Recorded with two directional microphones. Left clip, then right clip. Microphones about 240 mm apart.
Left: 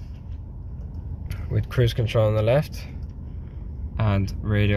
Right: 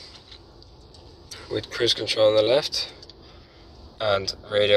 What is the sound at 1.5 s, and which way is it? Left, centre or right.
Speech, centre.